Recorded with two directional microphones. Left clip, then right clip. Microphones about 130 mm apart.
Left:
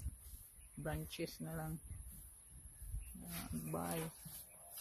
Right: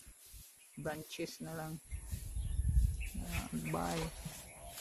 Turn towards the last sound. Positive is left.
turn(degrees=10)  # may be behind; listen again after turning